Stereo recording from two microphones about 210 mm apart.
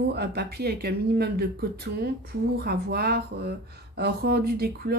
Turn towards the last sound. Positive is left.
turn(degrees=-45)  # may be behind; listen again after turning